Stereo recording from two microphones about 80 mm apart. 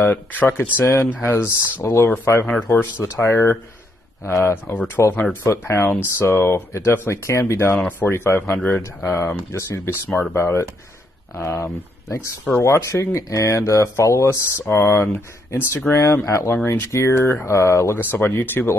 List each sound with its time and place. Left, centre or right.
0.0 s speech: left
10.3 s speech: left
18.1 s speech: left